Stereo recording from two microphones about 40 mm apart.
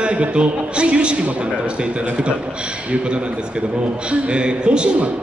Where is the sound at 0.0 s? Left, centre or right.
Right.